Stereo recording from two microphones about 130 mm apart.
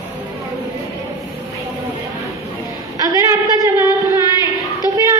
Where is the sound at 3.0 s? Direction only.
25° right (ahead or behind).